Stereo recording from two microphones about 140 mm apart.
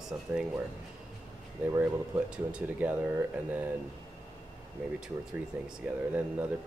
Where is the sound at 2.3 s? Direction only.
10° right (ahead or behind).